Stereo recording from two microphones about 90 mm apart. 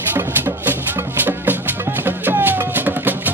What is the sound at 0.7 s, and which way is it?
Music, 20° right (ahead or behind).